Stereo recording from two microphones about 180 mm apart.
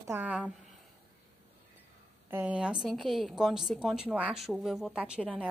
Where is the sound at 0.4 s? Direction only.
Centre (ahead or behind).